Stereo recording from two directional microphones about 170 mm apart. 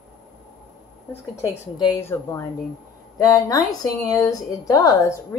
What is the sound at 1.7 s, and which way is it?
Speech, 25° left (ahead or behind).